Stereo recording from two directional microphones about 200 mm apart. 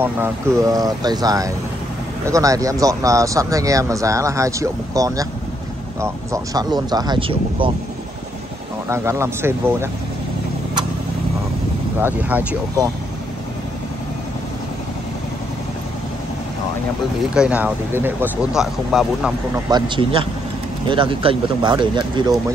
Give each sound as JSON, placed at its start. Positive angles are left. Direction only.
{"t": 0.0, "sound": "speech", "side_deg": -15}
{"t": 8.8, "sound": "speech", "side_deg": -15}
{"t": 12.0, "sound": "speech", "side_deg": -10}
{"t": 17.3, "sound": "speech", "side_deg": -5}
{"t": 19.5, "sound": "speech", "side_deg": -25}